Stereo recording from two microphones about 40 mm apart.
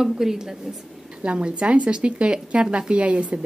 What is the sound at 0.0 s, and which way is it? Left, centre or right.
Speech, centre.